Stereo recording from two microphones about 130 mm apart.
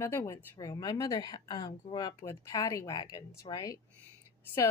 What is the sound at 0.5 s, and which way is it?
Speech, 30° left (ahead or behind).